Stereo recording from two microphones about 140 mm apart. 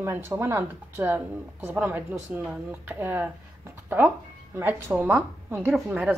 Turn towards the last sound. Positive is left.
turn(degrees=-10)  # may be behind; listen again after turning